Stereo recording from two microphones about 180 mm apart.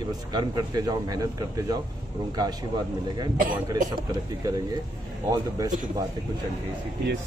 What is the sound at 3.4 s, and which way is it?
Speech, 50° right (ahead or behind).